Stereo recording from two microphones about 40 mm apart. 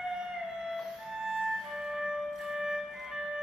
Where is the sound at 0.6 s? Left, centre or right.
Centre.